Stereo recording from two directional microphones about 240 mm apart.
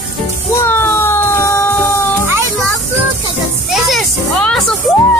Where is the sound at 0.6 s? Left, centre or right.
Centre.